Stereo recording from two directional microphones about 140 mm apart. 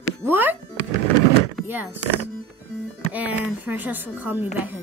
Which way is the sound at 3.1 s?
10° right (ahead or behind).